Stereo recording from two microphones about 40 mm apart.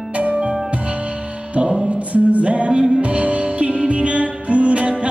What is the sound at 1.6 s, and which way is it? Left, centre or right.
Music, right.